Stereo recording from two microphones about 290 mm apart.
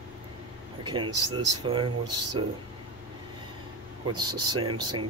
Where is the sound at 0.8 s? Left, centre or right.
Centre.